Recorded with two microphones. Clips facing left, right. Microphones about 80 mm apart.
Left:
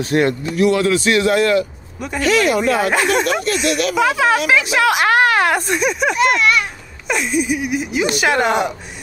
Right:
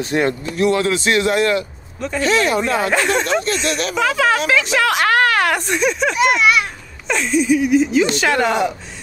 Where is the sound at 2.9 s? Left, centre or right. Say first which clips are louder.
Left 1 dB; centre.